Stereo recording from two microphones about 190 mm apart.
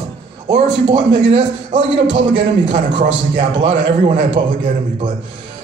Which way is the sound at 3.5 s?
75° right (ahead or behind).